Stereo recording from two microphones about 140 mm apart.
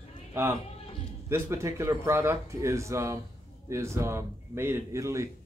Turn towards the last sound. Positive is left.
turn(degrees=-20)  # may be behind; listen again after turning